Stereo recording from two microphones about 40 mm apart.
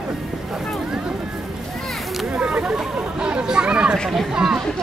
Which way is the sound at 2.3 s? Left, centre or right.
Right.